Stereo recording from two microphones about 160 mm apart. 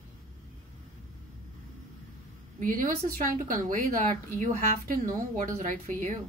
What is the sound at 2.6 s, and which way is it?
A woman's voice, 60° right (ahead or behind).